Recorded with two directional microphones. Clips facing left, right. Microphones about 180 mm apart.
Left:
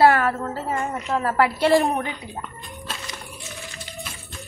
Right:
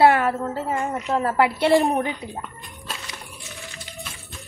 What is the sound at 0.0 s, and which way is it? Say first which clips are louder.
A woman's voice: even; 20° right (ahead or behind).